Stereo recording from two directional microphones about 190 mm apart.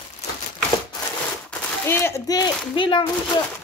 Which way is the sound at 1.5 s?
10° left (ahead or behind).